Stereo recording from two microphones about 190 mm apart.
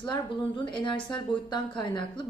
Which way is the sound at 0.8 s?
25° left (ahead or behind).